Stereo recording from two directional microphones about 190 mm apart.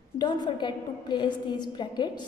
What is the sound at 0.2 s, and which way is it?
A woman's voice, 25° left (ahead or behind).